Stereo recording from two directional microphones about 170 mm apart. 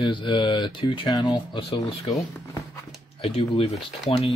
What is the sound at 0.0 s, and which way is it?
Speech, 30° left (ahead or behind).